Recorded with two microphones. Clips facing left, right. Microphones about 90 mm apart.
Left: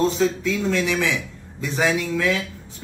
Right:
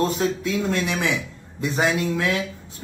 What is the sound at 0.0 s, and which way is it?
A man's voice, 15° right (ahead or behind).